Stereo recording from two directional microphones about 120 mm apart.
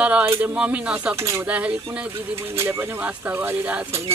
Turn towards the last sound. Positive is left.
turn(degrees=-15)  # may be behind; listen again after turning